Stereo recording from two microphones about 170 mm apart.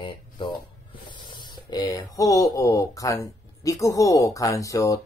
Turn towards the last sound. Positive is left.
turn(degrees=20)  # may be behind; listen again after turning